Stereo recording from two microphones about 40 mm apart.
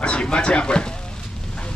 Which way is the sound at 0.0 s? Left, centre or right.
Left.